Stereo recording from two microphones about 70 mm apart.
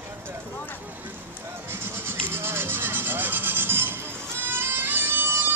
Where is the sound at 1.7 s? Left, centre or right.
Right.